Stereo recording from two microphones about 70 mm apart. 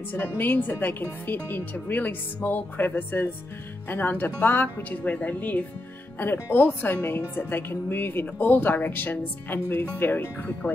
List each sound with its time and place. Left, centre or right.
0.1 s a woman's voice: left